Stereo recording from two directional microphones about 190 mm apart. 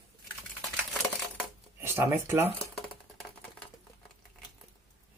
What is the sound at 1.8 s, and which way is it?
Speech, 15° right (ahead or behind).